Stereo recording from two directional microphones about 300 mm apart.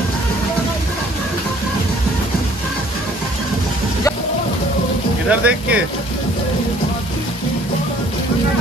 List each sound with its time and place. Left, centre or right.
5.3 s speech: centre